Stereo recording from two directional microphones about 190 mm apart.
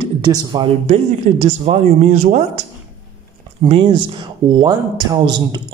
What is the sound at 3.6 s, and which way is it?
A man's voice, 30° right (ahead or behind).